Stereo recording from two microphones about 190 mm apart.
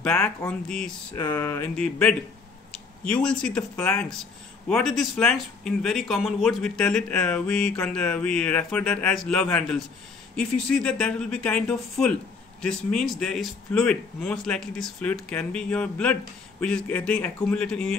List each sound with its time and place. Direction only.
0.0 s a man's voice: 5° left (ahead or behind)